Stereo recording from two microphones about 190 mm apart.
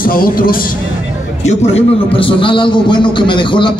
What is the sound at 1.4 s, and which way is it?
A man's voice, 35° left (ahead or behind).